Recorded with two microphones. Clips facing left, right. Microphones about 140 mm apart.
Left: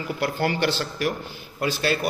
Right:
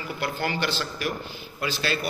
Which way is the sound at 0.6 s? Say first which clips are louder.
Left 4 dB; 55° left (ahead or behind).